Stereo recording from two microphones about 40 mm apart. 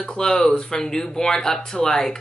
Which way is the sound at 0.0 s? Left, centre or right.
Left.